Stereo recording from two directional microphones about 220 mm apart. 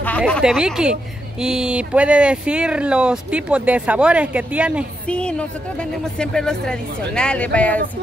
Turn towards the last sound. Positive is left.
turn(degrees=5)  # may be behind; listen again after turning